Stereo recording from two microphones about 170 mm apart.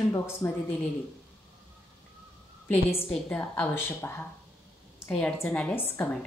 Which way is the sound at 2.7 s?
15° left (ahead or behind).